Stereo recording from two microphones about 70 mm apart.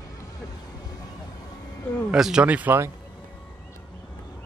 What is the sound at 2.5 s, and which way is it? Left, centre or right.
Speech, right.